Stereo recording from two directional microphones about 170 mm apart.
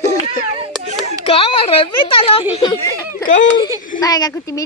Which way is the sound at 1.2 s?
35° left (ahead or behind).